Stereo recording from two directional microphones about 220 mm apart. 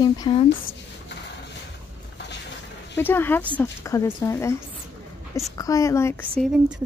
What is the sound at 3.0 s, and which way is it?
Speech, 10° left (ahead or behind).